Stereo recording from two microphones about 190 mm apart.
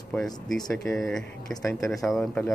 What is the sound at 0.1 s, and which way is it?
Speech, centre (ahead or behind).